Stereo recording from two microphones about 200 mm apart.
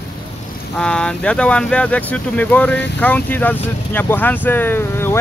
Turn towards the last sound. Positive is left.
turn(degrees=10)  # may be behind; listen again after turning